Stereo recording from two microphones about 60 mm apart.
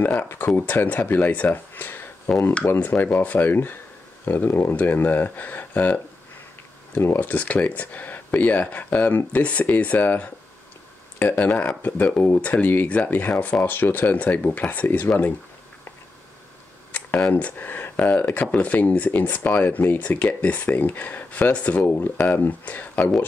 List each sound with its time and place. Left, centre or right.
0.0 s speech: left
2.3 s speech: centre
2.8 s speech: left
12.4 s speech: left
12.6 s speech: left
17.3 s speech: left
21.8 s speech: left